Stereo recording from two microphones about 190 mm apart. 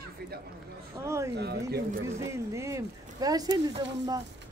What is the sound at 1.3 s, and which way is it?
Speech, 60° right (ahead or behind).